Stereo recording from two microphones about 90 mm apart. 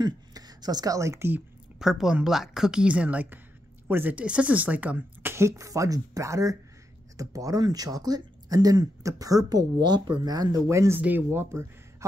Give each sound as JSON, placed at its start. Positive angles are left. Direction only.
{"t": 0.0, "sound": "a sound", "side_deg": -45}
{"t": 1.8, "sound": "speech", "side_deg": -5}
{"t": 10.7, "sound": "speech", "side_deg": -35}
{"t": 11.0, "sound": "speech", "side_deg": -20}